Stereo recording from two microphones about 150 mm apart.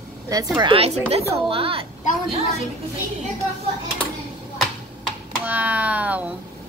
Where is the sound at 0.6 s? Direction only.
35° right (ahead or behind).